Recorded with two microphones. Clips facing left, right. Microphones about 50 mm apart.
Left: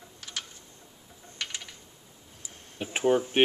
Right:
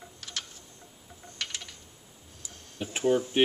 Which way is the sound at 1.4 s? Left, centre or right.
Centre.